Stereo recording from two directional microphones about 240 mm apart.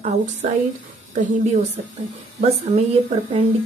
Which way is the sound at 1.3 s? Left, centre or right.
Right.